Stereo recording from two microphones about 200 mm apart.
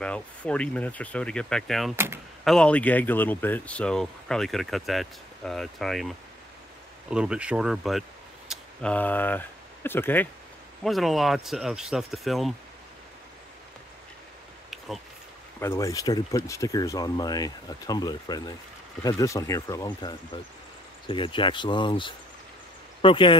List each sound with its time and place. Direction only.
0.0 s speech: 5° left (ahead or behind)
10.8 s speech: centre (ahead or behind)
15.6 s speech: 15° left (ahead or behind)